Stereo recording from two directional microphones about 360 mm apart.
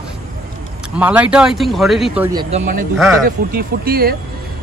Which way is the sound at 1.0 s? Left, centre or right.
Centre.